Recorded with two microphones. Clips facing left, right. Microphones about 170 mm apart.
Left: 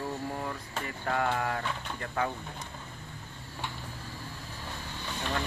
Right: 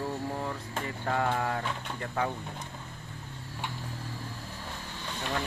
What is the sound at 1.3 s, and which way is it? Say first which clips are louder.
Speech: right 1 dB; 15° right (ahead or behind).